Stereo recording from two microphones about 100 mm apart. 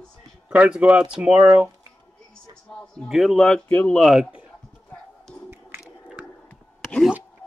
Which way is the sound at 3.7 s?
15° left (ahead or behind).